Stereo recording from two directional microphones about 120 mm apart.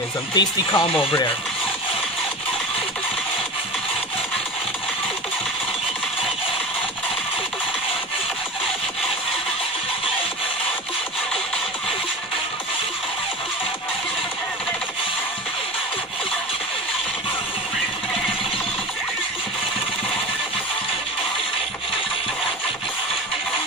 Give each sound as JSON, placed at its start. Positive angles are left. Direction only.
{"t": 0.3, "sound": "speech", "side_deg": 40}